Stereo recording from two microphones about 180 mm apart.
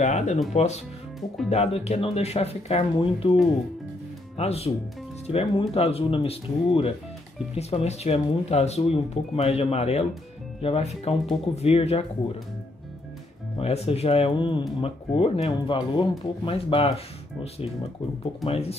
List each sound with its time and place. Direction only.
0.0 s speech: 40° left (ahead or behind)
4.4 s speech: 35° left (ahead or behind)
13.6 s speech: 35° left (ahead or behind)